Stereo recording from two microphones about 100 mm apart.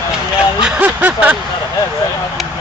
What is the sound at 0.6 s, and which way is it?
Speech, 15° right (ahead or behind).